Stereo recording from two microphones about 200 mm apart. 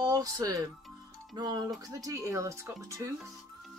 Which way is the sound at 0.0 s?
20° right (ahead or behind).